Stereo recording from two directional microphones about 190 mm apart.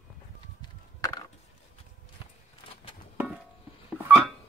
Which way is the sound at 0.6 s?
20° left (ahead or behind).